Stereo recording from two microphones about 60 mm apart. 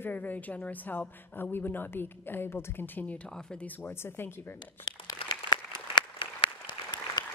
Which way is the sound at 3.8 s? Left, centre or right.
Left.